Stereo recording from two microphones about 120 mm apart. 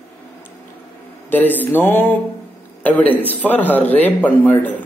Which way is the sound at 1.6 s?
15° left (ahead or behind).